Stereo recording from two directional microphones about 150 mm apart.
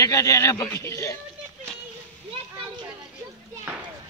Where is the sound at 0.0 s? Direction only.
20° left (ahead or behind).